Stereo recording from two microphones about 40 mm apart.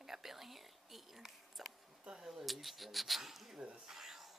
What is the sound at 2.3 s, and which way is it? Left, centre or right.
Speech, centre.